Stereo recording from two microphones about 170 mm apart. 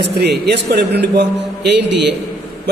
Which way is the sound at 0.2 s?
75° right (ahead or behind).